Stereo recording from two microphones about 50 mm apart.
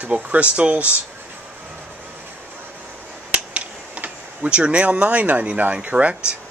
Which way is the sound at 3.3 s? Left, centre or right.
Right.